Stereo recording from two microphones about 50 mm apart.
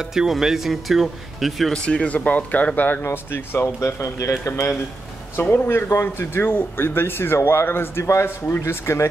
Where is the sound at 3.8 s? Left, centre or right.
Left.